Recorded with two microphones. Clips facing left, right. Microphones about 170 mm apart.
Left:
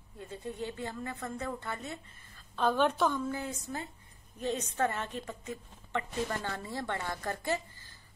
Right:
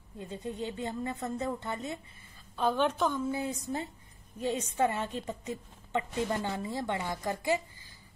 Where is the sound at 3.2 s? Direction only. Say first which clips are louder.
Right 3 dB; 15° right (ahead or behind).